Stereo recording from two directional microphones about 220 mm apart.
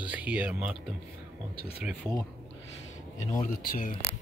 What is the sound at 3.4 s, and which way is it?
Speech, 35° left (ahead or behind).